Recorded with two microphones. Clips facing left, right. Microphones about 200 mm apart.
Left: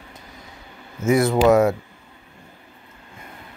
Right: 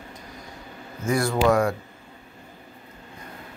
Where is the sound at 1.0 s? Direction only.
25° left (ahead or behind).